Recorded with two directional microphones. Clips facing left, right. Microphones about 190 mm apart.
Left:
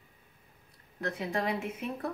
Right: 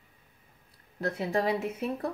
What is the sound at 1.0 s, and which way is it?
Speech, 30° right (ahead or behind).